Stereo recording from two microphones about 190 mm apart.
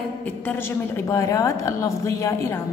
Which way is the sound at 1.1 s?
15° left (ahead or behind).